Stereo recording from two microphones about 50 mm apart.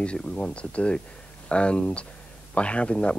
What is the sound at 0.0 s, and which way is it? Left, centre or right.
Speech, left.